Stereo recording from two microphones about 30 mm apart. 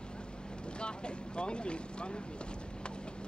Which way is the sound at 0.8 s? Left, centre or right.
Left.